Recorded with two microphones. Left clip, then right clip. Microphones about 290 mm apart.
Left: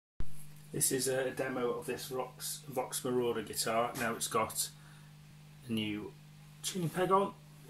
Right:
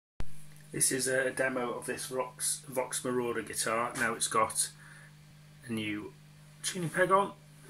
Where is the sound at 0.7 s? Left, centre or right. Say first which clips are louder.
Right 3 dB; centre.